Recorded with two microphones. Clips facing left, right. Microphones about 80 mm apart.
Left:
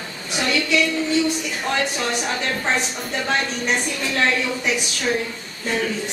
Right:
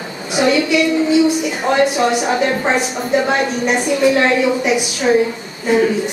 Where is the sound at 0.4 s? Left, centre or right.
Centre.